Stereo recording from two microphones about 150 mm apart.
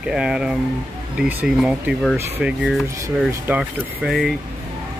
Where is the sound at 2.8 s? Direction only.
20° right (ahead or behind); by 4.3 s 5° right (ahead or behind).